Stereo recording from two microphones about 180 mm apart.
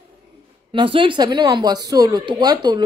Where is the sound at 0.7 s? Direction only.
30° right (ahead or behind).